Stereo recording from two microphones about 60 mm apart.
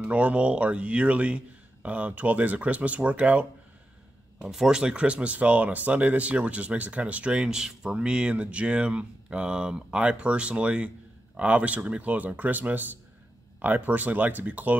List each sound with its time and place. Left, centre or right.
0.1 s speech: right
4.4 s speech: centre; by 14.8 s right